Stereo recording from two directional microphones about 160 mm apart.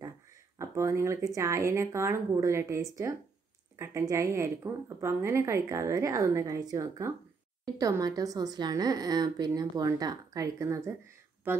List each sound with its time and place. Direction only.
0.6 s a woman's voice: 20° right (ahead or behind)